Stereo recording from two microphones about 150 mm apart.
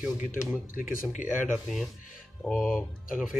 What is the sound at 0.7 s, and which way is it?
Speech, 65° left (ahead or behind).